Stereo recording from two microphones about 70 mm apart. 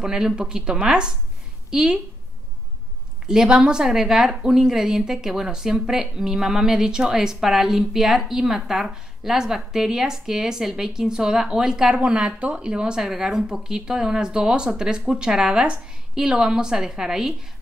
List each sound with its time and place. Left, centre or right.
0.0 s a woman's voice: centre
3.3 s a woman's voice: centre